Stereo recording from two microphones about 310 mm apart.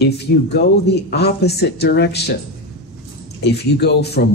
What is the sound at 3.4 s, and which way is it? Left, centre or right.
Speech, left.